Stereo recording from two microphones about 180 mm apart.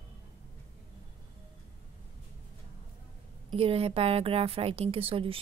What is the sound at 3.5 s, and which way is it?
A woman's voice, 30° right (ahead or behind).